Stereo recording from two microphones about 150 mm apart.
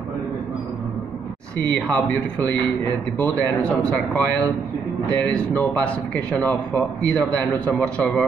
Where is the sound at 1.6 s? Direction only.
10° left (ahead or behind).